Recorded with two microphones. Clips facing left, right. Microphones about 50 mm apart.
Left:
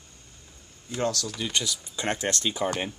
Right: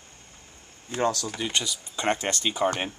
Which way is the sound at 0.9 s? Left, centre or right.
Right.